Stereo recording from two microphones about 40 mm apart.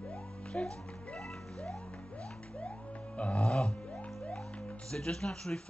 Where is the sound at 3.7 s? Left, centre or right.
Left.